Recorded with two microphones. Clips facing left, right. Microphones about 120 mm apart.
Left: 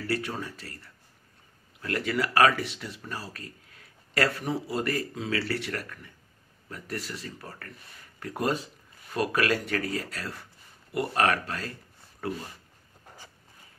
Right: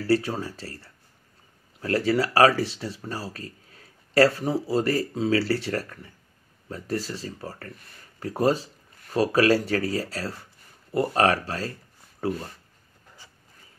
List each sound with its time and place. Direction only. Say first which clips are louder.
0.0 s speech: right 7 dB; 30° right (ahead or behind)